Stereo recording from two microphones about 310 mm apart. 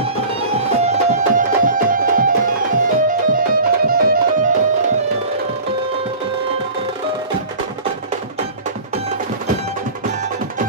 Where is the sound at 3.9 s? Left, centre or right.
Right.